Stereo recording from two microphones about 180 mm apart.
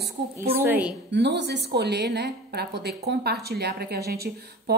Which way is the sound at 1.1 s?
70° right (ahead or behind).